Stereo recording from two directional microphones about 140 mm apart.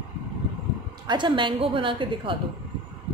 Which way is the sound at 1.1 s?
35° right (ahead or behind).